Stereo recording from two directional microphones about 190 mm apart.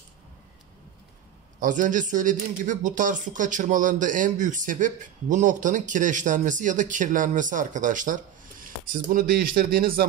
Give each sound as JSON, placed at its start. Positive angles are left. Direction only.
{"t": 1.6, "sound": "speech", "side_deg": -40}